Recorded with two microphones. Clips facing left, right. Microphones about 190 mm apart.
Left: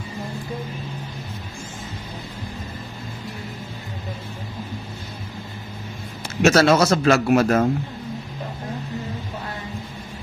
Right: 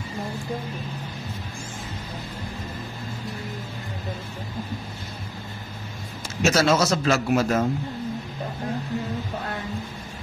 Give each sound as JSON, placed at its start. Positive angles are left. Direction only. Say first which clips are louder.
{"t": 6.4, "sound": "a man's voice", "louder": "left 5 dB", "side_deg": 60}